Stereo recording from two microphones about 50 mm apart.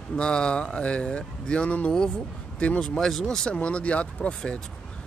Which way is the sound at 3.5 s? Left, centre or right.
Left.